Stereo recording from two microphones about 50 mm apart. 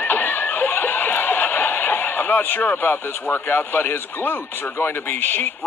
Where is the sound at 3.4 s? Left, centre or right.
Left.